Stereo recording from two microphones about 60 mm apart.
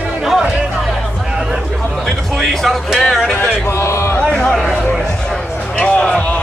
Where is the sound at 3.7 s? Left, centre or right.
Left.